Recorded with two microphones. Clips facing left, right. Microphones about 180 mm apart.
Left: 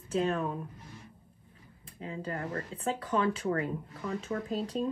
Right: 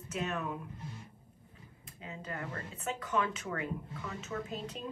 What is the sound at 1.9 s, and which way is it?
A woman's voice, 30° left (ahead or behind).